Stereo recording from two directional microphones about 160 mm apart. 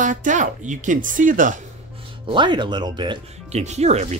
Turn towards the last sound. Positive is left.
turn(degrees=-45)  # may be behind; listen again after turning